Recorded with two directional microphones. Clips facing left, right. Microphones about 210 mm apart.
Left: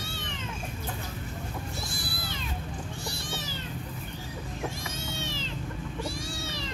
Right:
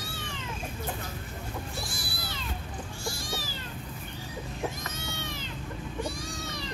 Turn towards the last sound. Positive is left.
turn(degrees=25)  # may be behind; listen again after turning